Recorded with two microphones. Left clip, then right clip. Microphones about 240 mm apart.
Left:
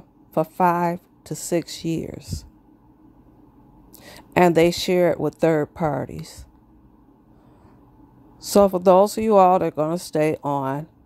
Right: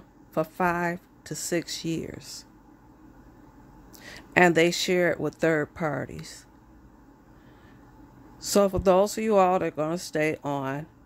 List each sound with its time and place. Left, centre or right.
0.3 s speech: centre
4.0 s speech: centre
8.4 s speech: centre